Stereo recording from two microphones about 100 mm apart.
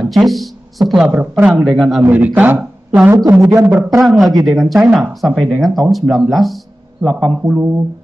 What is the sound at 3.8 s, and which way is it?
Speech, 30° right (ahead or behind).